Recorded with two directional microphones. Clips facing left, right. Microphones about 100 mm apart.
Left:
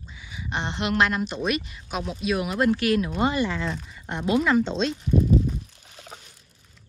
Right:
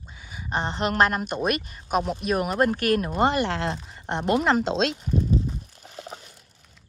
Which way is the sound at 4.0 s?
55° right (ahead or behind).